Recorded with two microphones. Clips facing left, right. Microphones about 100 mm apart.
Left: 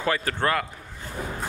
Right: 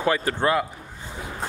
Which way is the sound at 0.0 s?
20° right (ahead or behind).